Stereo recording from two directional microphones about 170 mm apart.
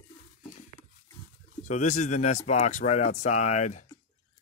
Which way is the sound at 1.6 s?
45° left (ahead or behind).